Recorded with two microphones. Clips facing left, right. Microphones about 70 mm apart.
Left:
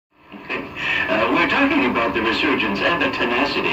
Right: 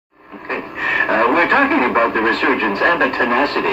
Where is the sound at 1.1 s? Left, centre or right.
Right.